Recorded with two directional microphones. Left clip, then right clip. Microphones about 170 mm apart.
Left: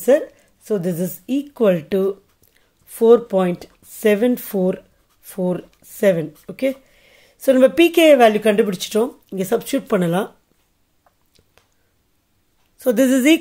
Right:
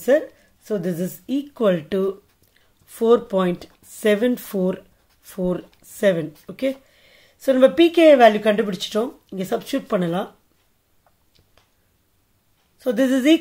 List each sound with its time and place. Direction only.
0.0 s a woman's voice: 25° left (ahead or behind)
12.7 s speech: 35° left (ahead or behind)